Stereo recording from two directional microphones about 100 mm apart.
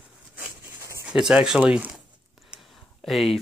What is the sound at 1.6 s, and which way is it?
Speech, 15° right (ahead or behind).